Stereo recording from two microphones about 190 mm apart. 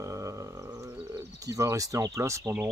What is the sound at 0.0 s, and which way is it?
Bird, 15° right (ahead or behind).